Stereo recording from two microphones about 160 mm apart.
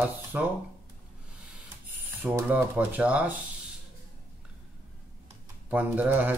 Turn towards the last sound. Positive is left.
turn(degrees=-10)  # may be behind; listen again after turning